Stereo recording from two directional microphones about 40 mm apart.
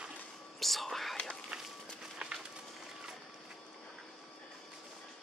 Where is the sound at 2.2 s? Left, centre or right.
Right.